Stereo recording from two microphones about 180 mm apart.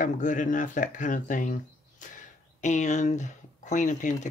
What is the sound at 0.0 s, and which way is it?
Speech, 45° left (ahead or behind).